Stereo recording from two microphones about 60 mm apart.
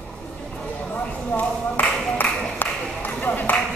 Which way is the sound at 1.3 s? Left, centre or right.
Left.